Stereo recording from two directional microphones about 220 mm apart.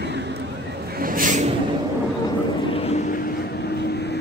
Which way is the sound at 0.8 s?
40° right (ahead or behind).